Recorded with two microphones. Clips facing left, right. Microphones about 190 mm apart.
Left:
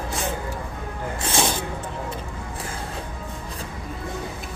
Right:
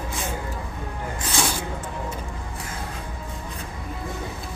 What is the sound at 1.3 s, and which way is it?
Snake, 25° left (ahead or behind).